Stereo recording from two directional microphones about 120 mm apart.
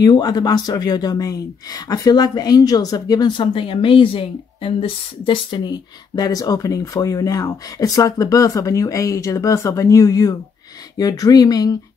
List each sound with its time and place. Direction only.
0.0 s speech: 35° left (ahead or behind)